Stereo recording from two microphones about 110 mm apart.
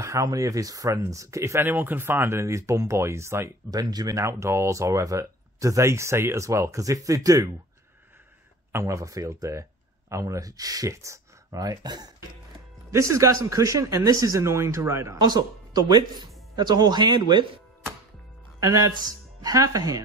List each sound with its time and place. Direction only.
0.0 s speech: 30° right (ahead or behind)
8.7 s speech: 30° right (ahead or behind)
15.1 s speech: 40° right (ahead or behind)
18.6 s speech: 30° right (ahead or behind)